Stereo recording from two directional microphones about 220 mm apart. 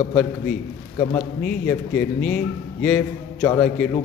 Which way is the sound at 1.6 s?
5° left (ahead or behind).